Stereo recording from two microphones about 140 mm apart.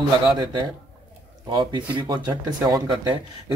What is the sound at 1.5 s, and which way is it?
Speech, 35° right (ahead or behind).